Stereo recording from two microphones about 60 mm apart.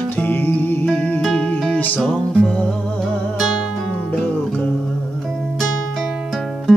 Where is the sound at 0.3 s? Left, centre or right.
Left.